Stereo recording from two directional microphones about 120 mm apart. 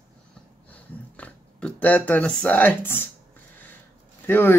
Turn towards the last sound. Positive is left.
turn(degrees=15)  # may be behind; listen again after turning